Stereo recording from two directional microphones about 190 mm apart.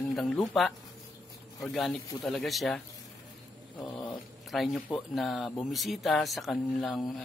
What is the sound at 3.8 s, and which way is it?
Cat, 20° left (ahead or behind).